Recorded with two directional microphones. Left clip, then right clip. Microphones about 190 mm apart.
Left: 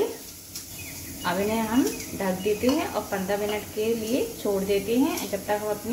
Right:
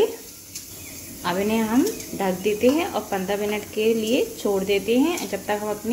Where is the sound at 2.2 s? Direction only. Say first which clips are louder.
Right 5 dB; 25° right (ahead or behind).